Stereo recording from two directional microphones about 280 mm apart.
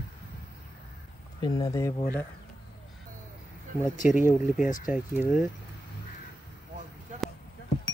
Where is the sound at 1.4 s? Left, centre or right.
Centre.